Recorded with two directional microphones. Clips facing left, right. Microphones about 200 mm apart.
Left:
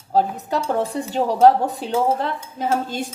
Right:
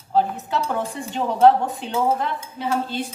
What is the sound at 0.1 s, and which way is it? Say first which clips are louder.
Speech: left 1 dB; 40° left (ahead or behind).